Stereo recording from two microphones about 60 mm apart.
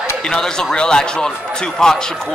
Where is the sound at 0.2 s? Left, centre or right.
Centre.